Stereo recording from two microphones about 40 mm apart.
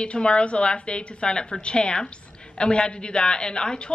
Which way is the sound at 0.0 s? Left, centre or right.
Left.